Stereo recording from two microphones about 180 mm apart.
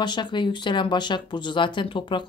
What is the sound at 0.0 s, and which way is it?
Speech, 25° left (ahead or behind).